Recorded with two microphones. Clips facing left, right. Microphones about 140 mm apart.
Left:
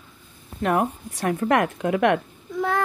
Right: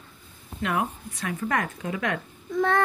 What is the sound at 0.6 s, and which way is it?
Speech, 45° left (ahead or behind).